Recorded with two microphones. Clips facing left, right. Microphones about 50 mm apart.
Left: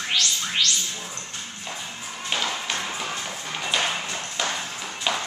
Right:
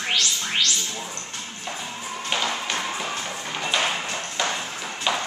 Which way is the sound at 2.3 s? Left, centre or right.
Centre.